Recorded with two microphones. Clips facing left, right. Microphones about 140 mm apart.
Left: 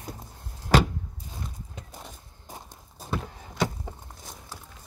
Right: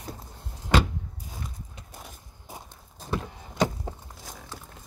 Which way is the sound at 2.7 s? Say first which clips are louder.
Right 1 dB; 5° left (ahead or behind).